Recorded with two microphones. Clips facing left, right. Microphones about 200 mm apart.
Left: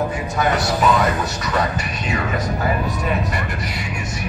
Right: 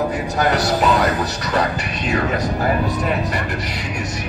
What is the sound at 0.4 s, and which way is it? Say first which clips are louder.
A man's voice: right 1 dB; 35° right (ahead or behind).